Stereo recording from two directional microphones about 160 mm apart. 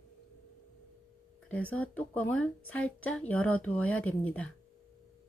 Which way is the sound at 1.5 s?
10° left (ahead or behind).